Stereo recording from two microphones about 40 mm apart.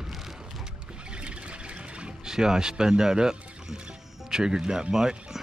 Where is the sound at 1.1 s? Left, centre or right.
Right.